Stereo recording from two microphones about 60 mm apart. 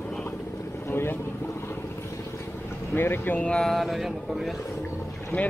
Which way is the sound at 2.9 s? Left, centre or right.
Left.